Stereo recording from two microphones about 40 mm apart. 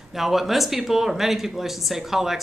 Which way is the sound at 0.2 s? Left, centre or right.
Centre.